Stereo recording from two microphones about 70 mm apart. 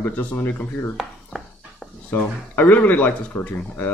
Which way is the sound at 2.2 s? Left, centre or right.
Left.